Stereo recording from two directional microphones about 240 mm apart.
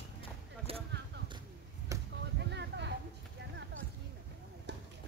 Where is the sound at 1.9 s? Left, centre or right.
Centre.